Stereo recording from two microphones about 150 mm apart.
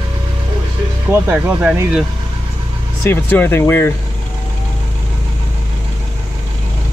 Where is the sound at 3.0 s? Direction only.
15° left (ahead or behind).